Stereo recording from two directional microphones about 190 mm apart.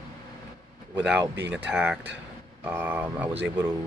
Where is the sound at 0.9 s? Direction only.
5° right (ahead or behind).